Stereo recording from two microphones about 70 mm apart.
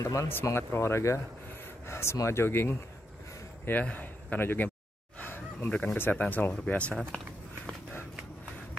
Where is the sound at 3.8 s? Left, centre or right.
Left.